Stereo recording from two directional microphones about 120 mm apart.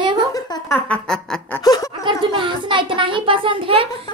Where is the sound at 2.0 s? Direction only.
40° right (ahead or behind).